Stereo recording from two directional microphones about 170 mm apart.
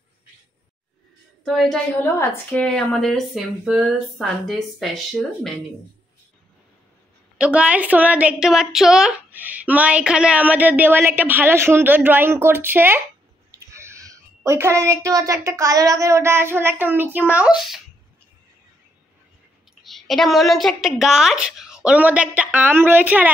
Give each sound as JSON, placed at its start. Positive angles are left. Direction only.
{"t": 1.4, "sound": "child singing", "side_deg": 0}
{"t": 2.0, "sound": "a woman's voice", "side_deg": 15}
{"t": 7.3, "sound": "a woman's voice", "side_deg": -5}
{"t": 13.5, "sound": "a sound", "side_deg": -15}
{"t": 15.0, "sound": "a woman's voice", "side_deg": -20}
{"t": 19.8, "sound": "a woman's voice", "side_deg": 0}